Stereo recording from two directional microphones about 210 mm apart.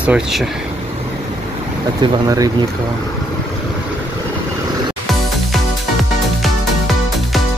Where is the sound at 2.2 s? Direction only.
15° right (ahead or behind).